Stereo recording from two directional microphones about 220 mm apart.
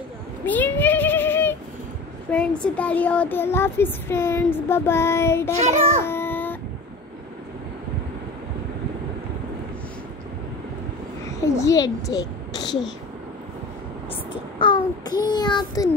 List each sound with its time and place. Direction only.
0.5 s a sound: 10° left (ahead or behind)
2.3 s child singing: 5° left (ahead or behind)
11.6 s a woman's voice: 15° left (ahead or behind)
14.6 s child singing: 20° left (ahead or behind)